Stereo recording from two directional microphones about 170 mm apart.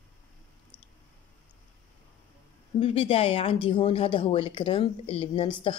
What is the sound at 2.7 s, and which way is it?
Speech, 35° left (ahead or behind).